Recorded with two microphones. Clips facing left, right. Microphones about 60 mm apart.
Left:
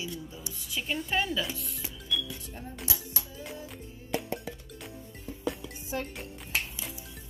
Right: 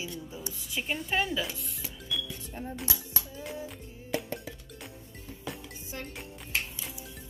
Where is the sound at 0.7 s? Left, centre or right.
Centre.